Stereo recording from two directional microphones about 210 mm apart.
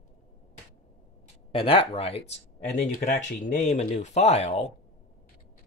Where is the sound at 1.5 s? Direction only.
25° left (ahead or behind).